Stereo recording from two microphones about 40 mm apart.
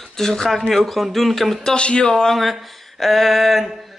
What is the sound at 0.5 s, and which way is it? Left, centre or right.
Speech, centre.